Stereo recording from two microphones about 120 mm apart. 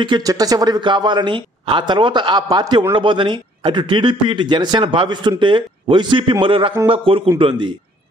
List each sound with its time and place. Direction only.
0.0 s speech: 35° right (ahead or behind)